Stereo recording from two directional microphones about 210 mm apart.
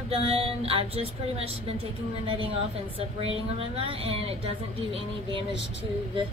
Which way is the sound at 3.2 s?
25° right (ahead or behind).